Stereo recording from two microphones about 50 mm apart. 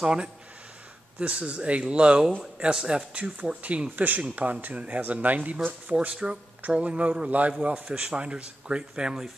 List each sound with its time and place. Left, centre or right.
0.0 s speech: centre; by 5.9 s right
6.2 s speech: centre
6.6 s speech: right